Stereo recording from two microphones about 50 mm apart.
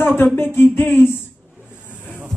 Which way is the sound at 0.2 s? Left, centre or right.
Left.